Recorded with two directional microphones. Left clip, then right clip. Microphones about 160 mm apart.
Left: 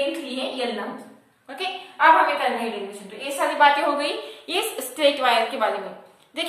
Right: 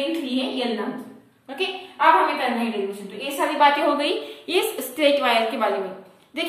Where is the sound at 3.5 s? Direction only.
10° right (ahead or behind).